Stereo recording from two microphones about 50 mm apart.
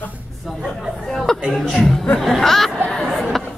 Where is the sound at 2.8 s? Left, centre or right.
Centre.